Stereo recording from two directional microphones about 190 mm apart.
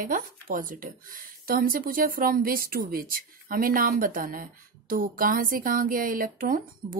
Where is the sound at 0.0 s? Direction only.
45° right (ahead or behind).